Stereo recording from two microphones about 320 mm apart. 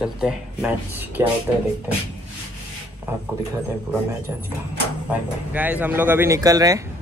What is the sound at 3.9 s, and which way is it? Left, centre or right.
Speech, centre.